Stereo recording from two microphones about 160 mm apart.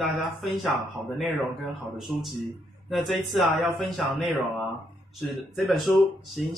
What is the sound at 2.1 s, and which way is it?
Speech, centre (ahead or behind).